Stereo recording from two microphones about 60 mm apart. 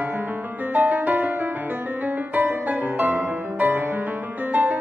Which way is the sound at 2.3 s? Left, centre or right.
Right.